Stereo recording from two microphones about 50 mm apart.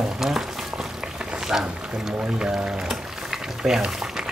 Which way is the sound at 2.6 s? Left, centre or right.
Centre.